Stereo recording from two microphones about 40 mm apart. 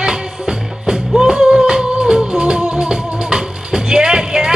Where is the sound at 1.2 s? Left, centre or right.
Centre.